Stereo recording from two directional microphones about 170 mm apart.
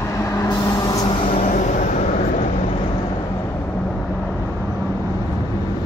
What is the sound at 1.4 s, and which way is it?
Vehicle, 45° left (ahead or behind).